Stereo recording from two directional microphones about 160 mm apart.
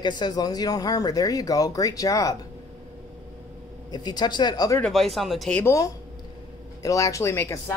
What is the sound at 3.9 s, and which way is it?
Speech, 25° left (ahead or behind).